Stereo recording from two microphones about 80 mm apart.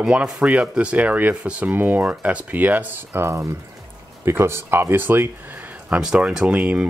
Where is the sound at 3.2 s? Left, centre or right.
Right.